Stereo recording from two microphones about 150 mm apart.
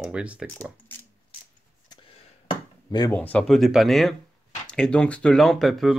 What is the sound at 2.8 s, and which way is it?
Speech, 25° left (ahead or behind).